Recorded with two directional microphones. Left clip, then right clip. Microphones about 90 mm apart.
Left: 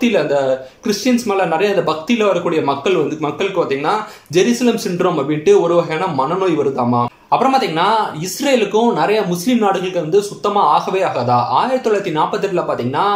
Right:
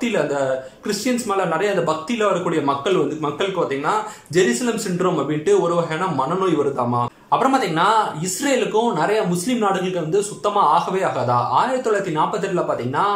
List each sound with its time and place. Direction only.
0.0 s speech: 25° left (ahead or behind)
4.4 s speech: 20° left (ahead or behind)